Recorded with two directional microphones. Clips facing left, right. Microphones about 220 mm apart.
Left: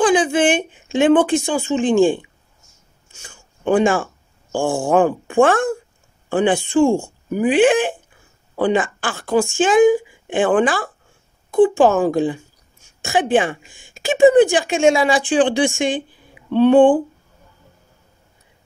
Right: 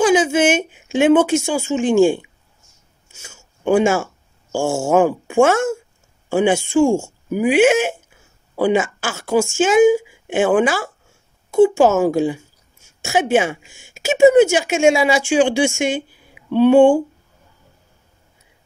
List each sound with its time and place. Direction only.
0.0 s a woman's voice: 5° right (ahead or behind)
8.1 s a sound: 10° right (ahead or behind)
9.6 s a woman's voice: 5° right (ahead or behind)